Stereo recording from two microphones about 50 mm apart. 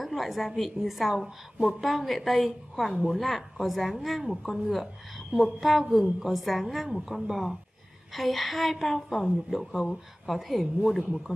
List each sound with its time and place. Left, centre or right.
0.0 s a woman's voice: centre